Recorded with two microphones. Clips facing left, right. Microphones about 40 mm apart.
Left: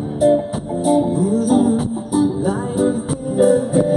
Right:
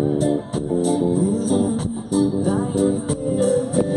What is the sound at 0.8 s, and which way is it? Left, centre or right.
Music, centre.